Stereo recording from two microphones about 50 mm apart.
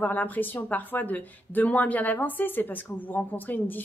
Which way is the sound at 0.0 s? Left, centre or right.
Left.